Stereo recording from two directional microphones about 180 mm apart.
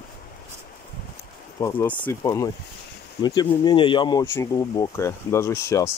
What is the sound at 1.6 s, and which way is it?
Speech, 10° left (ahead or behind).